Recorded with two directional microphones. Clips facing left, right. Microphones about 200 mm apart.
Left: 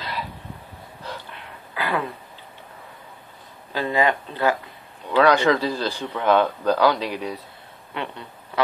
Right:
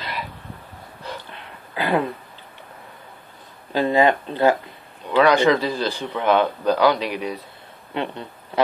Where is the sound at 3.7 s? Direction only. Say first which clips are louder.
Right 4 dB; 25° right (ahead or behind).